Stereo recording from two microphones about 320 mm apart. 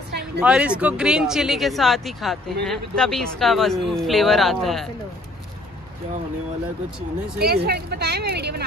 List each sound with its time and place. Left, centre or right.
0.4 s speech: centre
7.3 s speech: right